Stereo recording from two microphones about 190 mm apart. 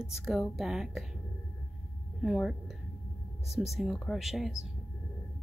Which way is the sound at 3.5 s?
35° left (ahead or behind).